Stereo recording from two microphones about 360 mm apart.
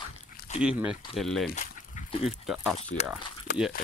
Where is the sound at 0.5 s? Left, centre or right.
Centre.